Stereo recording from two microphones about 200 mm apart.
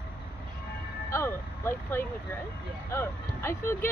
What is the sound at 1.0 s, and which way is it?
Speech, 15° left (ahead or behind).